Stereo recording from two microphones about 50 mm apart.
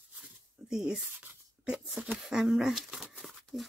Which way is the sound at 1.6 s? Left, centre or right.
Centre.